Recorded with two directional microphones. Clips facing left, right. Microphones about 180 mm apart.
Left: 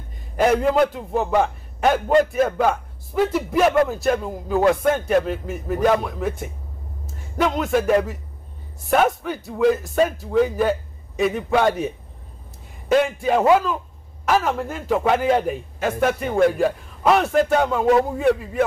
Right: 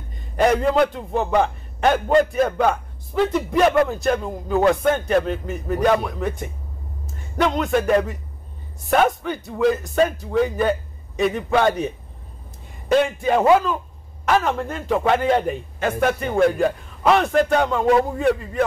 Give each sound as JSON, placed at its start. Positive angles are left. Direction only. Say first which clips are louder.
{"t": 0.4, "sound": "a man's voice", "louder": "even", "side_deg": 5}